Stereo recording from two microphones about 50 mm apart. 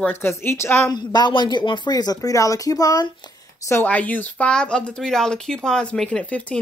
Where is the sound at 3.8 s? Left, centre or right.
Left.